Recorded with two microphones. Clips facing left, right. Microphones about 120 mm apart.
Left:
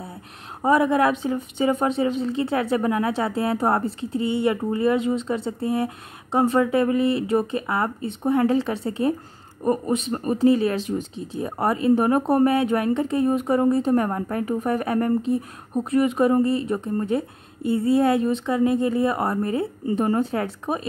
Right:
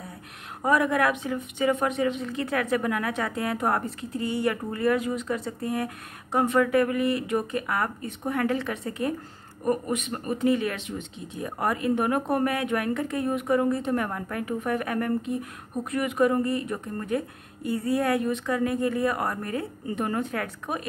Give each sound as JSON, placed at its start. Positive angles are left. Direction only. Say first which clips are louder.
{"t": 0.6, "sound": "a woman's voice", "louder": "left 4 dB", "side_deg": 25}